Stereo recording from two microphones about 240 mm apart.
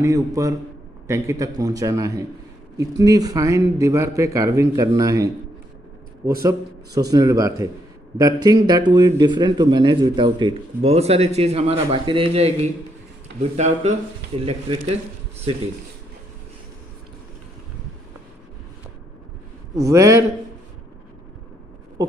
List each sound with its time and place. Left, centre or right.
0.0 s speech: centre
7.0 s speech: centre
19.7 s speech: centre